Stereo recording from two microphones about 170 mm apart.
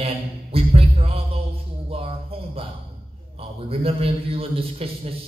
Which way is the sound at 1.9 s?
35° right (ahead or behind).